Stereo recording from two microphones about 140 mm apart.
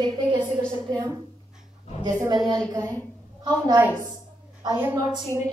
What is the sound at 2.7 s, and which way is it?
A woman's voice, 25° right (ahead or behind).